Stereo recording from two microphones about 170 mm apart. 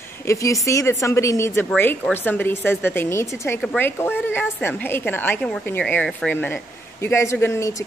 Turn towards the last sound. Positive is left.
turn(degrees=15)  # may be behind; listen again after turning